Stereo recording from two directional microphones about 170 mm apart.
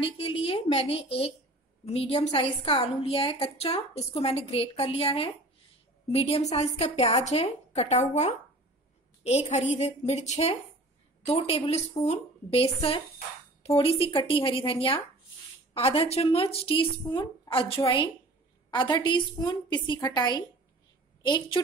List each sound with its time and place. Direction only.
0.0 s a woman's voice: 30° left (ahead or behind)